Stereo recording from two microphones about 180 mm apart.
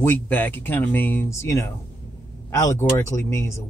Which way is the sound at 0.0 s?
10° left (ahead or behind).